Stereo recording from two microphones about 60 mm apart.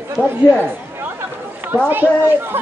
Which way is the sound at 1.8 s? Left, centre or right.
Right.